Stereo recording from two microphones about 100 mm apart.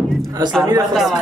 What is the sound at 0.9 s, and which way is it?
Speech, 5° right (ahead or behind).